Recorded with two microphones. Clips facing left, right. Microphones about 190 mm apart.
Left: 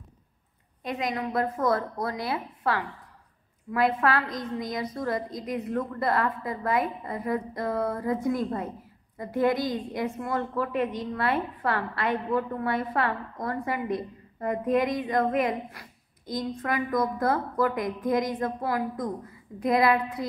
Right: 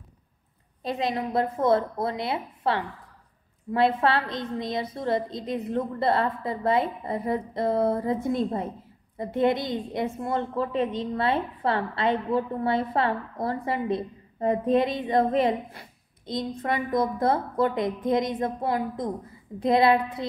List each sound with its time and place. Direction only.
0.8 s a woman's voice: 30° right (ahead or behind)